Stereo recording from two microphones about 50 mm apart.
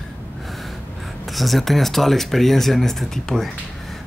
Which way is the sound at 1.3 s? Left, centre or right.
Centre.